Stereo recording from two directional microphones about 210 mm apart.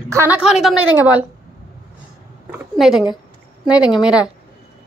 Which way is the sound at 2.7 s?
Centre (ahead or behind).